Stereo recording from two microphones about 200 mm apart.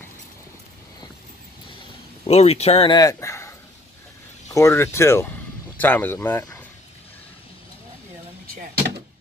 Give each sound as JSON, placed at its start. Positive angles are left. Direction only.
{"t": 2.2, "sound": "speech", "side_deg": 30}
{"t": 4.6, "sound": "speech", "side_deg": 15}